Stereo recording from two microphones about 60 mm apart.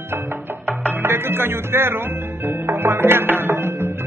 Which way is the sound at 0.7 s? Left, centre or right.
Right.